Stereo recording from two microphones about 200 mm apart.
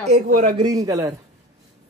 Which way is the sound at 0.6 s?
20° right (ahead or behind).